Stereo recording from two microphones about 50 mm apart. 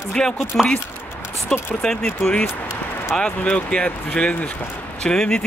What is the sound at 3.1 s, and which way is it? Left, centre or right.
Speech, left.